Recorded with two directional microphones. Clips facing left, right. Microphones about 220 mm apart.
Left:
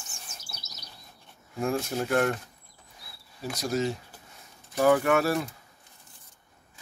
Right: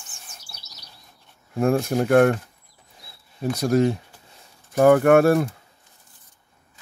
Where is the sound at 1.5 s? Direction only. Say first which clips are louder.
Right 8 dB; 55° right (ahead or behind).